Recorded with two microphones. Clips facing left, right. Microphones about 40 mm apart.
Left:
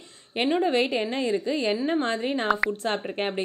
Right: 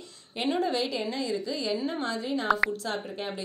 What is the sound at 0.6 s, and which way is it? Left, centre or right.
A woman's voice, left.